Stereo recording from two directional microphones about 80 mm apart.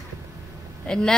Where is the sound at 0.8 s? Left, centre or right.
Centre.